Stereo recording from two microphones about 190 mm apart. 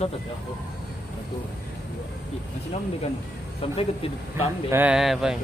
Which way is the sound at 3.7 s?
30° left (ahead or behind).